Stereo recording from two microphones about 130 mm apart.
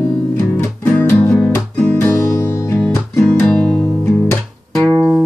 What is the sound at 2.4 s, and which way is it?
Music, 25° left (ahead or behind).